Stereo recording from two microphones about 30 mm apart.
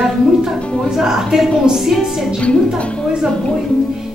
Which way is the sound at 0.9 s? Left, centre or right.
Centre.